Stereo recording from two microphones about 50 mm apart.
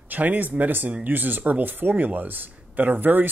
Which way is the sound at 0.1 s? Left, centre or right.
Right.